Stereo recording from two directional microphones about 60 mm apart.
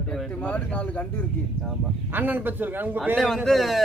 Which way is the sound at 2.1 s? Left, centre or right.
Right.